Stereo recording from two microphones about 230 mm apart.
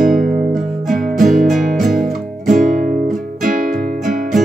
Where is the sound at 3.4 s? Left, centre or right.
Right.